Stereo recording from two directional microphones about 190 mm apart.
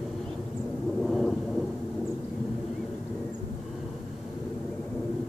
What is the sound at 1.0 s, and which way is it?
Thunder, centre (ahead or behind).